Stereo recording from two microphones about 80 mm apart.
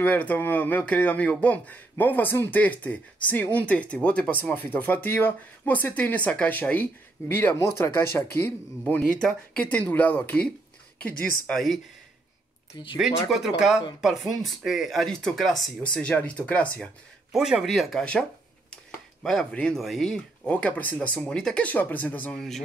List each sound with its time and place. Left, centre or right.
0.0 s speech: centre
9.1 s speech: centre
11.5 s speech: centre
13.0 s speech: centre
15.8 s speech: centre
17.3 s speech: centre
19.2 s speech: centre
20.4 s speech: centre
21.6 s speech: left
22.3 s speech: centre